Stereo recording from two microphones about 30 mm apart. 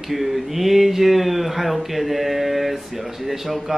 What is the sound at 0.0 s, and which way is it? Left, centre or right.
Speech, centre.